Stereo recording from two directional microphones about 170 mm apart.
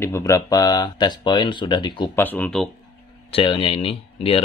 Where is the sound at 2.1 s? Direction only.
10° left (ahead or behind).